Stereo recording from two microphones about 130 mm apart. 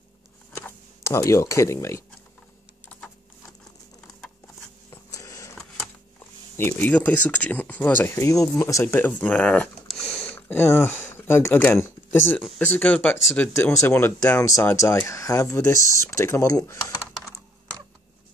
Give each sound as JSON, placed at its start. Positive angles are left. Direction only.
{"t": 0.6, "sound": "speech", "side_deg": 20}
{"t": 2.9, "sound": "computer keyboard", "side_deg": 10}
{"t": 4.9, "sound": "a sound", "side_deg": 25}
{"t": 6.5, "sound": "speech", "side_deg": 15}
{"t": 8.8, "sound": "speech", "side_deg": 15}
{"t": 9.8, "sound": "a sound", "side_deg": 5}
{"t": 10.3, "sound": "speech", "side_deg": 15}